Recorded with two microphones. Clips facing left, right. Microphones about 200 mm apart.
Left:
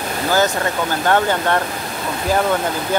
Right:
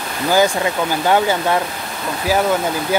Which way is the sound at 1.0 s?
10° right (ahead or behind).